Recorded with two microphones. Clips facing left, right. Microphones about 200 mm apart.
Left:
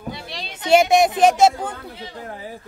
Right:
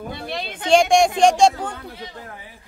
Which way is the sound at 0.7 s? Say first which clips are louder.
Even; 5° left (ahead or behind).